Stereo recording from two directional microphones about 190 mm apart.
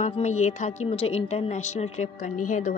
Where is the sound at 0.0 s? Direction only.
35° left (ahead or behind).